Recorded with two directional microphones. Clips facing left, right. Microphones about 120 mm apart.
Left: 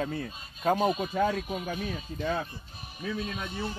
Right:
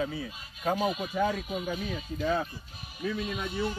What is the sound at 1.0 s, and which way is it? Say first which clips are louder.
Speech: left 1 dB; 40° left (ahead or behind).